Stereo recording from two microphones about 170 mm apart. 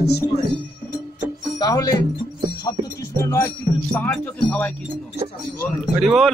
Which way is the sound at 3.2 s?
15° left (ahead or behind).